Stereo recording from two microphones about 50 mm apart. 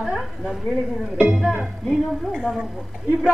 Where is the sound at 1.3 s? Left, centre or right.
Centre.